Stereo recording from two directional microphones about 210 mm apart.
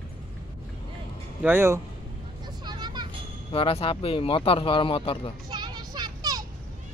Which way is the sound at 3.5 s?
25° left (ahead or behind).